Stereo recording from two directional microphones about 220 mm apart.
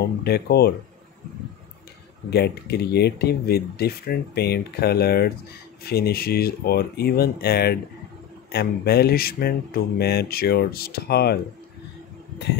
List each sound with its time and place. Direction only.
0.2 s speech: 45° left (ahead or behind)
2.2 s speech: 45° left (ahead or behind)